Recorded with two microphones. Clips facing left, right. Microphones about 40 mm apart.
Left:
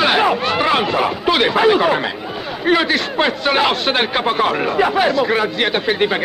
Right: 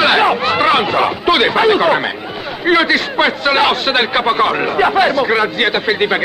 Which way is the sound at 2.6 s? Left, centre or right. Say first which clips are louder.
Right 3 dB; right.